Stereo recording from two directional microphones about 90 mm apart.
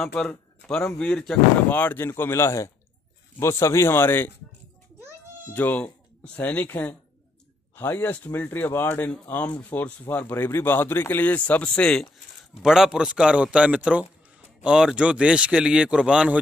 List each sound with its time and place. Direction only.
0.0 s speech: 10° left (ahead or behind); by 4.3 s 25° left (ahead or behind)
5.5 s speech: 20° left (ahead or behind)
12.6 s a man's voice: 5° right (ahead or behind)